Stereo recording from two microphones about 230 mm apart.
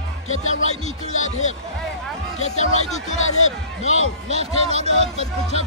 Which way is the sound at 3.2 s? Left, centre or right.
Left.